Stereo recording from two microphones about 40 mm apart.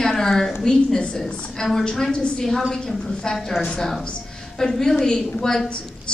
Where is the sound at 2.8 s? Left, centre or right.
Centre.